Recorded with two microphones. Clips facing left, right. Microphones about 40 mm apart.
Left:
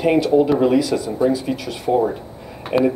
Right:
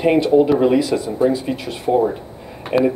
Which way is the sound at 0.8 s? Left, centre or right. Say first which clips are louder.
Right 1 dB; right.